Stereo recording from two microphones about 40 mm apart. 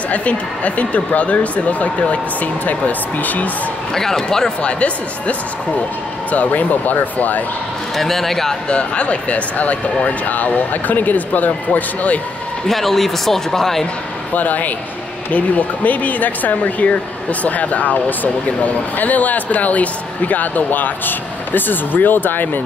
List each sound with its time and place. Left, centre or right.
0.1 s speech: left
3.9 s speech: centre
4.6 s speech: left
6.3 s speech: left
7.9 s speech: centre
8.6 s speech: left
12.6 s speech: centre
14.3 s speech: left